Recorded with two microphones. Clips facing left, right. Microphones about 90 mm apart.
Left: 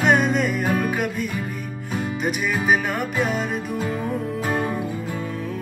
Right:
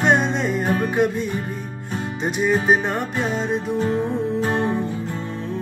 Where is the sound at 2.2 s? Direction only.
30° right (ahead or behind).